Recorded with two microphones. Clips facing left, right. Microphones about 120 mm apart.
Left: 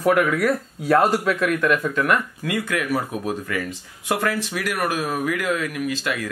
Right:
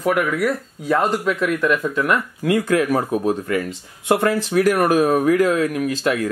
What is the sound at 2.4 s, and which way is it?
Speech, 35° right (ahead or behind).